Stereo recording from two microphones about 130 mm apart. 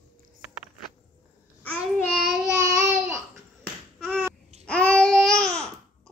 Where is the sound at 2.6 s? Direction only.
20° right (ahead or behind).